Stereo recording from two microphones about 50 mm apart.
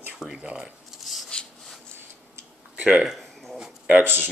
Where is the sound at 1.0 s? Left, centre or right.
Centre.